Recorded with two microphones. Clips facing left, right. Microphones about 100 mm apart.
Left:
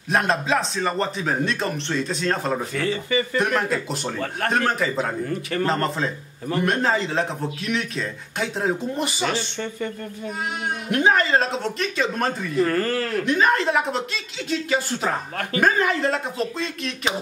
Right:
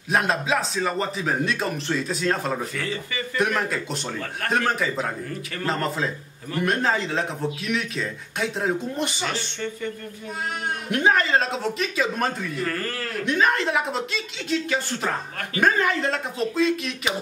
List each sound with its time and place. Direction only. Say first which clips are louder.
0.1 s speech: left 1 dB; centre (ahead or behind)
2.7 s speech: left 6 dB; 35° left (ahead or behind)
3.3 s speech: right 3 dB; centre (ahead or behind)
10.9 s speech: left 1 dB; centre (ahead or behind)
12.5 s speech: left 7 dB; 30° left (ahead or behind)
13.2 s speech: even; centre (ahead or behind)